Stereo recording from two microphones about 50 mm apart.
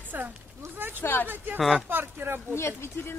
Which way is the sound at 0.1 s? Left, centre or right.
Right.